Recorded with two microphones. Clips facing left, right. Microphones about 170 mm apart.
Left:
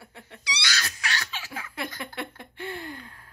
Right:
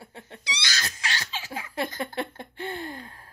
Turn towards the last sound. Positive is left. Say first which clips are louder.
# right 2 dB
turn(degrees=-30)  # may be behind; listen again after turning